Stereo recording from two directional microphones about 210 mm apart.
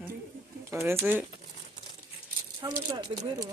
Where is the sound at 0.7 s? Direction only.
10° right (ahead or behind).